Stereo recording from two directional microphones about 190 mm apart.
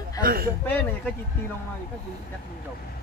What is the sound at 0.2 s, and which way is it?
Speech, 50° right (ahead or behind).